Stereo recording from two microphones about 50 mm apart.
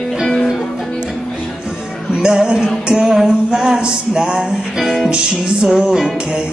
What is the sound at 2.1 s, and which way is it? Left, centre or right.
Music, centre.